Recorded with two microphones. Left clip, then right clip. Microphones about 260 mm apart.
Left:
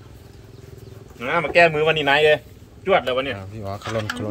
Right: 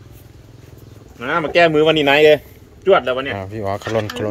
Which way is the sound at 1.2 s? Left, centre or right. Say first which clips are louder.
Right 2 dB; right.